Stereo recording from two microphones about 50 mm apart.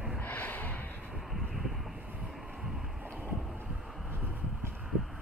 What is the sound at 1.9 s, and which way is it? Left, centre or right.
Vehicle, right.